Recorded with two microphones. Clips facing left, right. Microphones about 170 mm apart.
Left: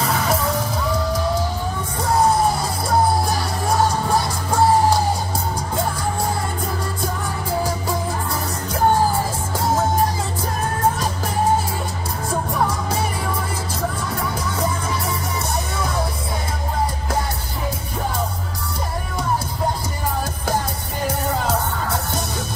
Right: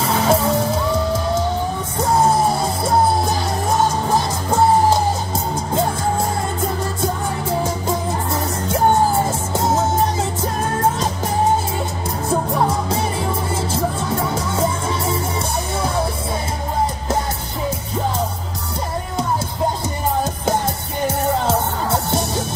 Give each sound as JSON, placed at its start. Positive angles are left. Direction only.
{"t": 0.0, "sound": "music", "side_deg": -25}
{"t": 9.5, "sound": "music", "side_deg": -25}
{"t": 12.3, "sound": "music", "side_deg": -25}
{"t": 21.5, "sound": "music", "side_deg": -25}